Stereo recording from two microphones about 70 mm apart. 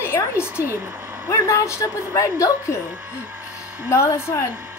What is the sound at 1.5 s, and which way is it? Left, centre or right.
A woman's voice, left.